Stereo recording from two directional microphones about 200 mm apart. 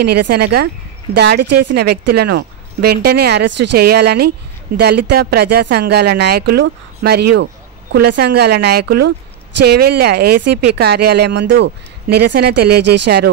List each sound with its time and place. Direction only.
0.0 s speech: 55° right (ahead or behind)